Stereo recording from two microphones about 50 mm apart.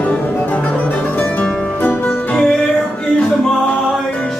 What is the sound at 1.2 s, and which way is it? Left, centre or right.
Music, left.